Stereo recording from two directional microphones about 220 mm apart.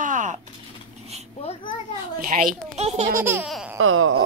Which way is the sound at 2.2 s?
40° right (ahead or behind).